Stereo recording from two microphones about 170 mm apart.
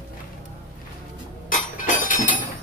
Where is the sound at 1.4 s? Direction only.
50° left (ahead or behind).